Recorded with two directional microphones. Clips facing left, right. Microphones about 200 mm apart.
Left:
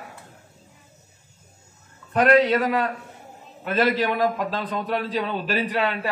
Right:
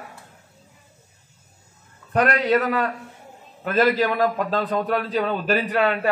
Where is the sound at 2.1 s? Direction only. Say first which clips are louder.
Left 2 dB; 45° right (ahead or behind).